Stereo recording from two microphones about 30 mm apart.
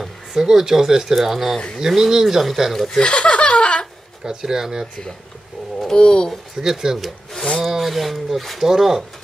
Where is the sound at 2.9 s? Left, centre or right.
Left.